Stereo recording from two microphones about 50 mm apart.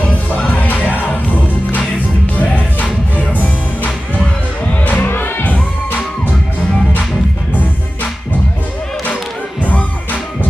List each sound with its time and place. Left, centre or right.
0.3 s music: left